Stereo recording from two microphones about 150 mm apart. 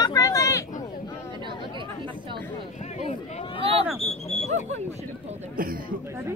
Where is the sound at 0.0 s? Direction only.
25° left (ahead or behind).